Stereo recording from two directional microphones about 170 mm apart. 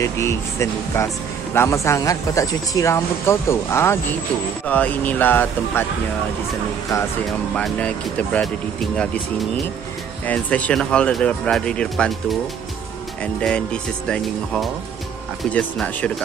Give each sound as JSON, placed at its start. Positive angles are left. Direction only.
{"t": 0.0, "sound": "speech", "side_deg": 15}
{"t": 7.5, "sound": "speech", "side_deg": 5}